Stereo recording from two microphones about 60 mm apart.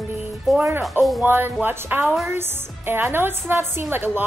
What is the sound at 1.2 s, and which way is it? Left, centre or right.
Speech, right.